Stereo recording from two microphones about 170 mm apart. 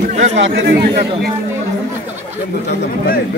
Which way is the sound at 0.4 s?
70° right (ahead or behind).